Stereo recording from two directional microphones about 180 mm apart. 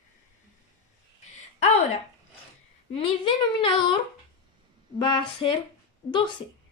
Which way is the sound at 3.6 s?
25° left (ahead or behind).